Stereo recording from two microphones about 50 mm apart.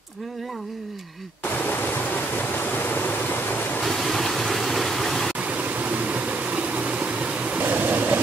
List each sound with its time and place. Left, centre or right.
1.4 s pink noise: left
3.8 s vehicle: centre
5.4 s a sound: right
7.6 s train: right